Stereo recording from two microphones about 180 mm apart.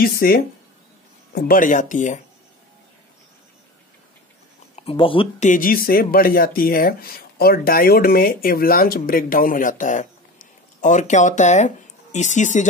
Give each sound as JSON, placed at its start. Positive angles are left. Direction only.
{"t": 0.0, "sound": "speech", "side_deg": 55}
{"t": 4.7, "sound": "speech", "side_deg": 30}
{"t": 5.4, "sound": "speech", "side_deg": 50}